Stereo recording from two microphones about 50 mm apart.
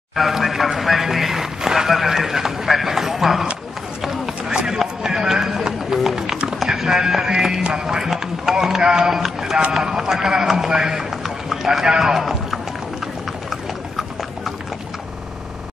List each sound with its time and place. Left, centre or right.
0.1 s speech: centre
4.5 s run: centre
6.6 s music: centre
9.7 s speech: centre